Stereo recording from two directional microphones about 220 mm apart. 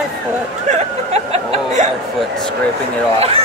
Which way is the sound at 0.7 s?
30° right (ahead or behind).